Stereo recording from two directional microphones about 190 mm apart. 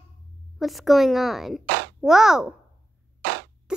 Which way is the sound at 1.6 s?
60° right (ahead or behind).